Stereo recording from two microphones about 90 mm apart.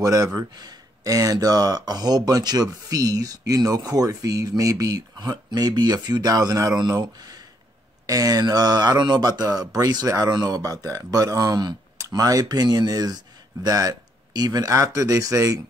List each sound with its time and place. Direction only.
0.0 s speech: 40° right (ahead or behind)